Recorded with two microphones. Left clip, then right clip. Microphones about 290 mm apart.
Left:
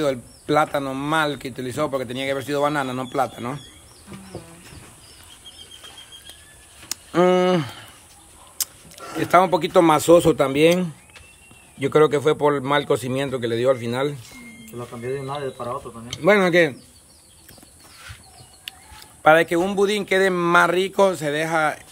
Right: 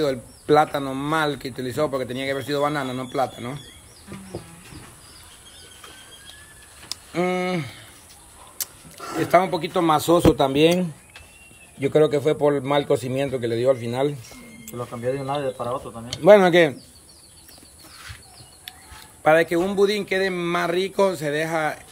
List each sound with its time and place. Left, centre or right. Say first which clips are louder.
0.0 s speech: left 1 dB; centre
6.9 s speech: left 7 dB; centre
8.6 s a sound: left 4 dB; centre
9.2 s speech: left 2 dB; centre
14.8 s speech: right 3 dB; right
16.2 s speech: right 3 dB; centre
18.7 s chicken: left 4 dB; centre
19.2 s speech: left 2 dB; centre